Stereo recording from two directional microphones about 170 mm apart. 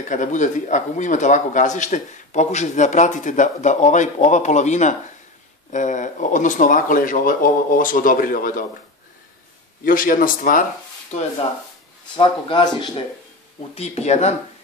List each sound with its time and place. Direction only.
0.1 s speech: 45° left (ahead or behind)
9.8 s speech: 55° left (ahead or behind)
12.2 s speech: 30° left (ahead or behind)